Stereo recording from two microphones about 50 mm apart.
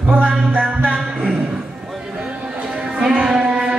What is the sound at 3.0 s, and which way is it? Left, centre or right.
Music, centre.